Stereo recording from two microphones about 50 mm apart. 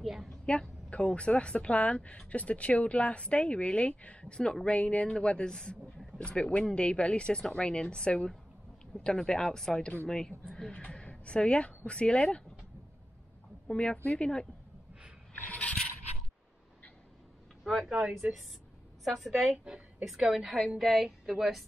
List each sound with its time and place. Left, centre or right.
0.0 s a sound: centre
0.5 s speech: left
10.7 s a woman's voice: left
13.7 s a woman's voice: centre
15.5 s scrape: left
17.8 s a woman's voice: centre
19.6 s a woman's voice: centre
20.2 s a woman's voice: centre